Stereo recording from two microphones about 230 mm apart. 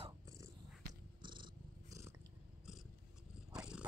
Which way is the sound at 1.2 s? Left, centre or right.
Right.